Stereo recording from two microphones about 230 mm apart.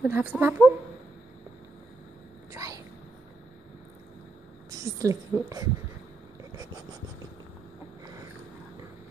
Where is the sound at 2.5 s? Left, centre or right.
Centre.